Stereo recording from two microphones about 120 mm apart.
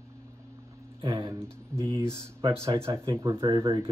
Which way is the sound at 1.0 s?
40° right (ahead or behind).